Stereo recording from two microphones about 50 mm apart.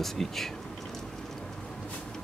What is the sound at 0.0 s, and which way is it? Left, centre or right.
Speech, centre.